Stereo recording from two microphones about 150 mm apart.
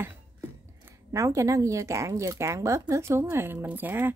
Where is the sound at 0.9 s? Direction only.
20° right (ahead or behind).